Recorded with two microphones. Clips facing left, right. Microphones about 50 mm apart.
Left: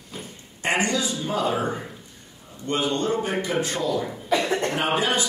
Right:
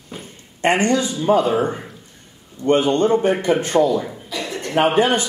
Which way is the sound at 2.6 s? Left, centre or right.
Right.